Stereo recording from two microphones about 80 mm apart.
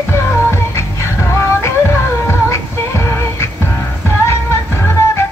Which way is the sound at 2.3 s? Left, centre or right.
Left.